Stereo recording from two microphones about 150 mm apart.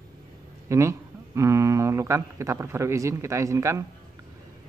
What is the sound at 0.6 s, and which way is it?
Speech, 20° right (ahead or behind).